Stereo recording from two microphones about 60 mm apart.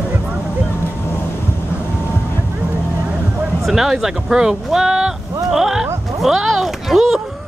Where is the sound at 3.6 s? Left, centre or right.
Centre.